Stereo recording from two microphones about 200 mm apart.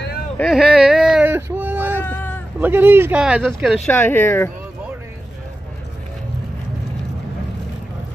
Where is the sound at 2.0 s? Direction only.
10° left (ahead or behind).